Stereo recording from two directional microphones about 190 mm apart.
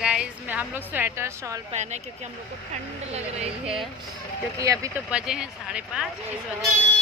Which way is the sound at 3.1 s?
35° right (ahead or behind).